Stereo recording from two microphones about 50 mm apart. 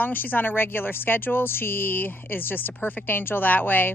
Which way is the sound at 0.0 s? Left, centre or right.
Left.